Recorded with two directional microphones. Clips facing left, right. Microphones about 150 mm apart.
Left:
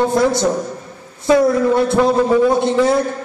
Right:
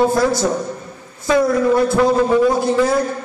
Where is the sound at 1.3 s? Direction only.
25° left (ahead or behind).